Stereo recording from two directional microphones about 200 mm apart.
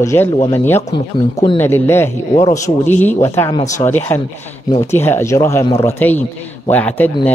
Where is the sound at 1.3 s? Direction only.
25° left (ahead or behind).